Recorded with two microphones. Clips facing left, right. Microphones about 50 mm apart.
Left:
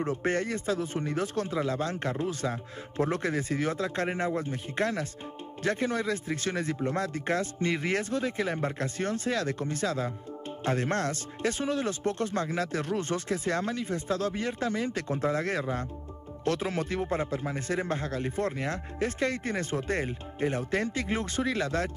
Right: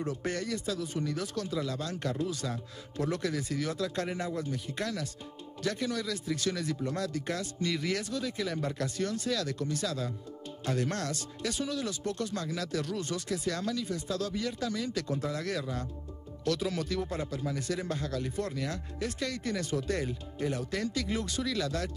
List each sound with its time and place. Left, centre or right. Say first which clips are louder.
0.0 s a man's voice: left 5 dB; left